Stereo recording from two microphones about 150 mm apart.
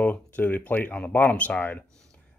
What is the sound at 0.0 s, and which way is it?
Speech, 10° left (ahead or behind).